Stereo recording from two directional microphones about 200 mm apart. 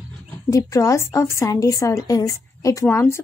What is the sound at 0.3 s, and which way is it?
A woman's voice, 15° left (ahead or behind).